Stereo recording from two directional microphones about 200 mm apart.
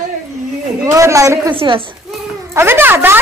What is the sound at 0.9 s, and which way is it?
A child's voice, 15° right (ahead or behind).